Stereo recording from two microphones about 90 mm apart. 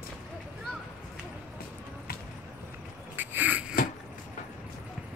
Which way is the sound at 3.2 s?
20° right (ahead or behind).